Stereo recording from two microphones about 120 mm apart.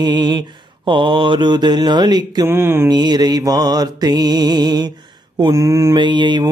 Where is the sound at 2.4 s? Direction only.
20° right (ahead or behind).